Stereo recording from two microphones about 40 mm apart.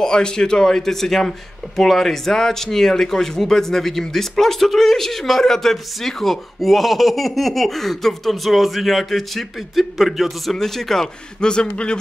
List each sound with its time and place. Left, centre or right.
0.0 s speech: centre
10.6 s speech: centre; by 12.0 s left